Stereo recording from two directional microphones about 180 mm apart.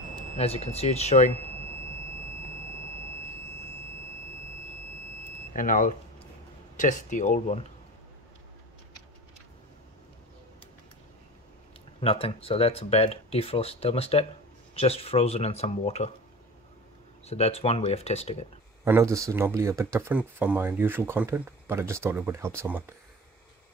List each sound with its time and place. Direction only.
0.1 s speech: 35° left (ahead or behind)
5.5 s speech: 45° left (ahead or behind)
12.0 s speech: 30° left (ahead or behind)
17.3 s speech: 35° left (ahead or behind)
18.9 s speech: 15° right (ahead or behind)